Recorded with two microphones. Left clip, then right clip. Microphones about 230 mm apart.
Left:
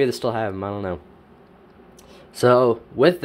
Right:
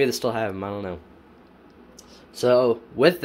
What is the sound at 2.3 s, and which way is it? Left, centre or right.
Speech, left.